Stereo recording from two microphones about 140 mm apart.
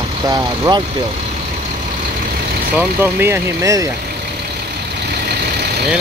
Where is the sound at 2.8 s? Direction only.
15° right (ahead or behind).